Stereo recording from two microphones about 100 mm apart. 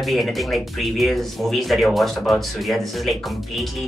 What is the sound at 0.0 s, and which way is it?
Speech, centre (ahead or behind).